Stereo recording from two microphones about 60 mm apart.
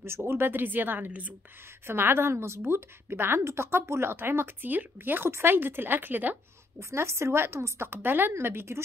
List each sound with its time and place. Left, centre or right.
0.3 s a woman's voice: right
1.9 s a woman's voice: right
6.8 s a woman's voice: right